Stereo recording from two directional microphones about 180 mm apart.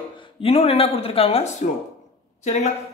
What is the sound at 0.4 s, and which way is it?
Speech, 35° left (ahead or behind).